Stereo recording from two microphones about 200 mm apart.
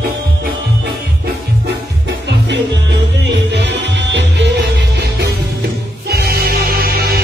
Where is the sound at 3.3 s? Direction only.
60° right (ahead or behind).